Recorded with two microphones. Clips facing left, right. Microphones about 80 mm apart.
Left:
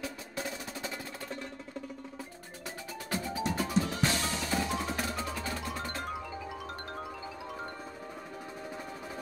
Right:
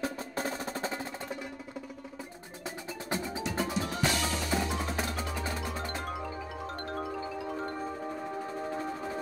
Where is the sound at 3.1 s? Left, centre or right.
Right.